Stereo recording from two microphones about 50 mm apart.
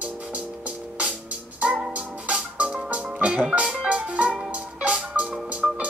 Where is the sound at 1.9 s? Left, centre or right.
Right.